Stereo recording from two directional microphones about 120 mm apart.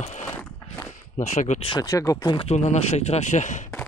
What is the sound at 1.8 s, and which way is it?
Speech, 25° left (ahead or behind).